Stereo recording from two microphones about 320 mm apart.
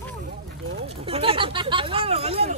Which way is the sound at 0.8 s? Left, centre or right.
Centre.